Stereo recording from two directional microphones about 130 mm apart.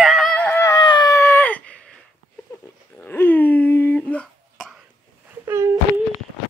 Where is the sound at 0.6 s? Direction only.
30° left (ahead or behind); by 1.8 s 10° left (ahead or behind).